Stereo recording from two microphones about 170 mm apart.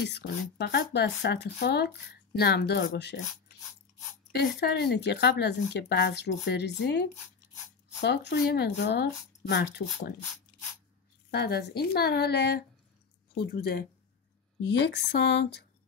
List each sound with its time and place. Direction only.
0.0 s speech: 80° left
4.6 s speech: 75° left (ahead or behind)
11.2 s speech: 70° left (ahead or behind); by 15.6 s 85° left